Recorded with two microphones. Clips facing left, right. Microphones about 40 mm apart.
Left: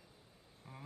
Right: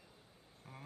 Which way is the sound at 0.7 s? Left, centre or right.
Centre.